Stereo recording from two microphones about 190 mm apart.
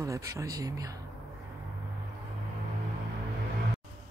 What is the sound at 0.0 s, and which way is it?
Speech, 15° right (ahead or behind).